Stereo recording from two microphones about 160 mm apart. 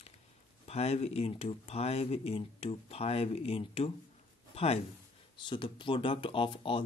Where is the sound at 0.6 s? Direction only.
40° left (ahead or behind).